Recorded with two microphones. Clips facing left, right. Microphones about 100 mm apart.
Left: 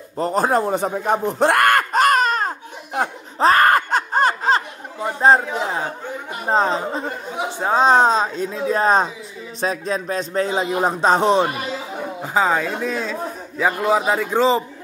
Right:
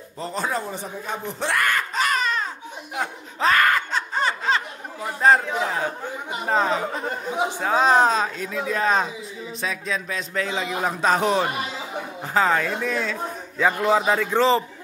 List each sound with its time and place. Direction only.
0.2 s snicker: 45° left (ahead or behind)
5.0 s speech: 25° left (ahead or behind)
6.4 s a man's voice: 30° left (ahead or behind)